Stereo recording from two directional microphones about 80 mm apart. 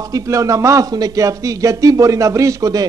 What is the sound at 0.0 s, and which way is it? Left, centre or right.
A man's voice, right.